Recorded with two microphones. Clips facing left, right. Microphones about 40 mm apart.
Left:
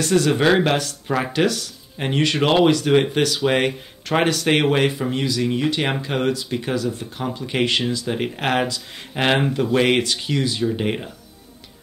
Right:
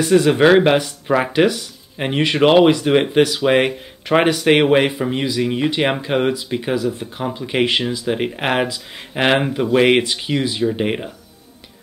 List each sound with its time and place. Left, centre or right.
0.0 s speech: centre